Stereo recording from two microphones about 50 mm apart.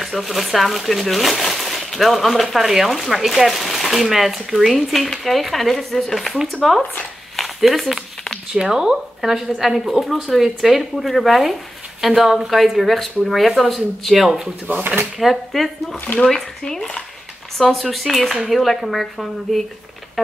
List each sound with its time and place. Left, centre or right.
0.0 s speech: centre
7.3 s a sound: centre
8.5 s speech: centre
14.7 s speech: right
15.1 s speech: centre
16.2 s speech: centre
17.6 s speech: centre